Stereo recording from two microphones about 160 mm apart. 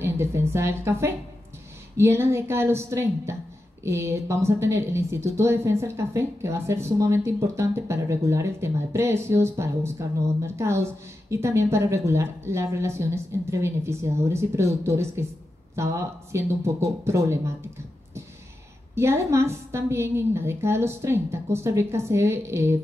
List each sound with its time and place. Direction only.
0.0 s a woman's voice: 15° right (ahead or behind)
18.9 s a woman's voice: 15° right (ahead or behind)